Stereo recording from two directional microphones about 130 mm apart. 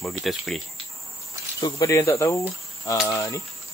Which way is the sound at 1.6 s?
20° left (ahead or behind).